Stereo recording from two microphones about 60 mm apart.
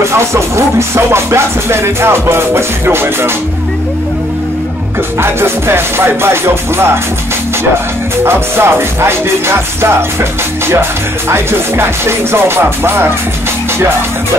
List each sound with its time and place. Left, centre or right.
0.0 s music: right
5.2 s music: right
8.2 s music: right